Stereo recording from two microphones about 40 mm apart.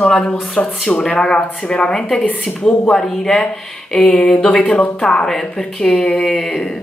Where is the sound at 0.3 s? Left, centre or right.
Left.